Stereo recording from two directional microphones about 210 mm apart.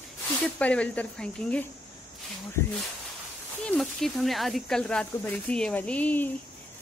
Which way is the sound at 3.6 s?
5° left (ahead or behind).